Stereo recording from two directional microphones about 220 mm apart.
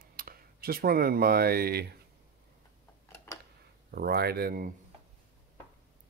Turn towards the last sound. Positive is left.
turn(degrees=-45)  # may be behind; listen again after turning